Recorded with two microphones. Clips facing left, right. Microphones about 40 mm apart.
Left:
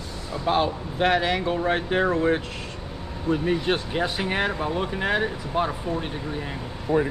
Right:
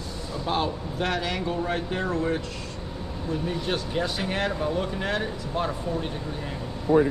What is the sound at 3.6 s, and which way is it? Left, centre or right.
Speech, left.